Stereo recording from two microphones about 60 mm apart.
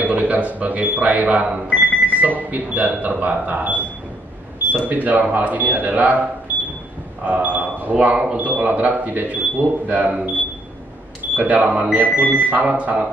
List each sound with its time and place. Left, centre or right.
0.0 s speech: right
7.2 s speech: right
11.3 s speech: right